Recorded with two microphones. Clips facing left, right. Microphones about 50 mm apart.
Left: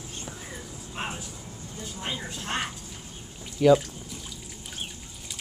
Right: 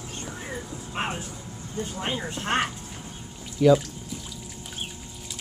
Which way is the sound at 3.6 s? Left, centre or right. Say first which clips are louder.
Right 1 dB; centre.